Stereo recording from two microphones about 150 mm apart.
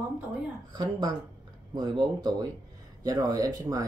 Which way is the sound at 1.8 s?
25° right (ahead or behind).